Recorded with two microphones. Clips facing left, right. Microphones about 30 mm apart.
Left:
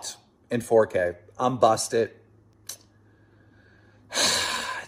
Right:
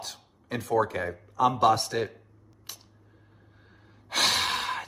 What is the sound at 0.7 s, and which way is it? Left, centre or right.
Speech, right.